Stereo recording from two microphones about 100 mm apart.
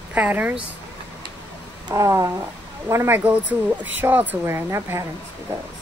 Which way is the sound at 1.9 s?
30° right (ahead or behind).